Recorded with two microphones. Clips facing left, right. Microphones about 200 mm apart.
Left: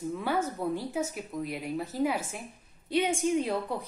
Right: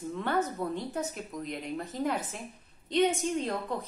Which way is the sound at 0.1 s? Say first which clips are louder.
Right 1 dB; 10° left (ahead or behind).